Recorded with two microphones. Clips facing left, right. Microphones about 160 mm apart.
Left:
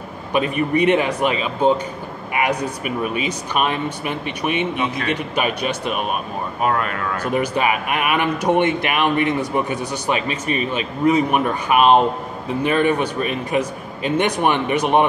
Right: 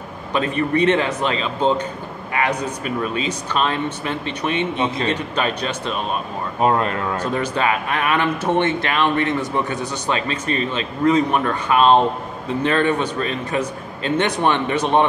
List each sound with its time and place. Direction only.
0.3 s speech: 15° left (ahead or behind)
4.7 s speech: 30° right (ahead or behind)
5.1 s speech: 10° left (ahead or behind)
6.6 s speech: 25° right (ahead or behind)
7.3 s speech: 15° left (ahead or behind)